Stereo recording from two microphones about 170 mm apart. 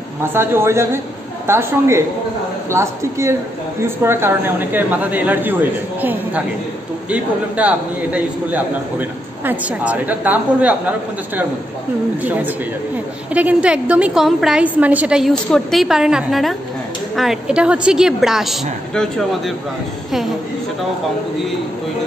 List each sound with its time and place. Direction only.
0.2 s speech: 15° right (ahead or behind)
12.2 s a woman's voice: 10° right (ahead or behind)